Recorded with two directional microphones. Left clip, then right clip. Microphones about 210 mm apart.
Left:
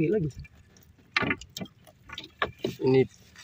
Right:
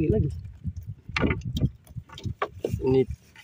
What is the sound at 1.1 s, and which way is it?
Vehicle, 40° right (ahead or behind).